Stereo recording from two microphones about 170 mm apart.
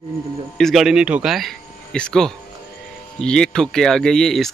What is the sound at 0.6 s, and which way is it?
Speech, centre (ahead or behind).